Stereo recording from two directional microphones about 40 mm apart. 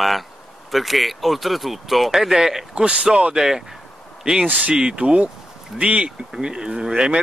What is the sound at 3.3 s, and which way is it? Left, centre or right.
Speech, centre.